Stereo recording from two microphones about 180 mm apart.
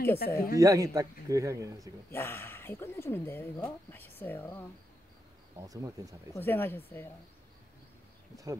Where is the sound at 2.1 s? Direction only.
10° left (ahead or behind).